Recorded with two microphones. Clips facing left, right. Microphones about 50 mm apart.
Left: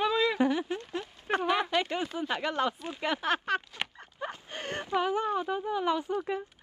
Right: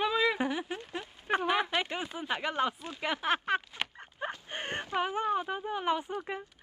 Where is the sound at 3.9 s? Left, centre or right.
Right.